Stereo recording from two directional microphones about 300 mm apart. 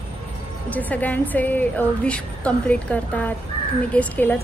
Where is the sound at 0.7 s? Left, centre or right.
Centre.